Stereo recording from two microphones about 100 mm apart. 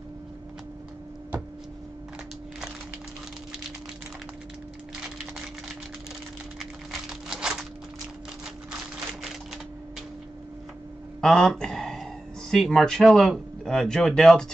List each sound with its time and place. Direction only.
6.6 s crumpling: 5° right (ahead or behind)
11.1 s speech: 5° left (ahead or behind)